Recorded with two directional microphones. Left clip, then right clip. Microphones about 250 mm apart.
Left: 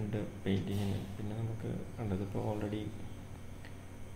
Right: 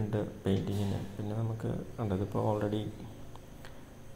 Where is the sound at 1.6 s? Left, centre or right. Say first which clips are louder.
Right 5 dB; centre.